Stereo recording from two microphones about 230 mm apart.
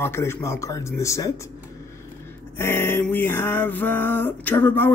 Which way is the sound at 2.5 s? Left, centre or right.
Centre.